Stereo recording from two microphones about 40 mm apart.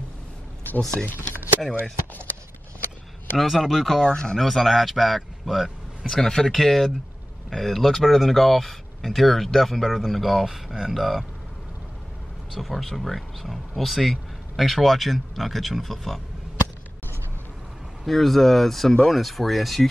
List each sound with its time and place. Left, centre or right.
0.9 s speech: left
3.3 s speech: centre
4.1 s speech: centre
4.4 s speech: centre
6.0 s speech: centre
12.5 s speech: centre
18.0 s speech: centre